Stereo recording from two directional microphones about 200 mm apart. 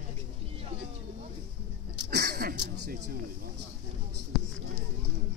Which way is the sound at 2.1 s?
55° right (ahead or behind).